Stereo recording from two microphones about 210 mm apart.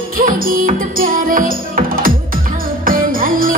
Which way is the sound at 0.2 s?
40° right (ahead or behind).